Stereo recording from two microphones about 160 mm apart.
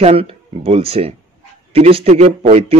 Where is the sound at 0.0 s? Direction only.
35° right (ahead or behind).